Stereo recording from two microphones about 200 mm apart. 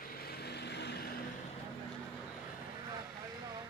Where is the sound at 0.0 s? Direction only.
50° left (ahead or behind).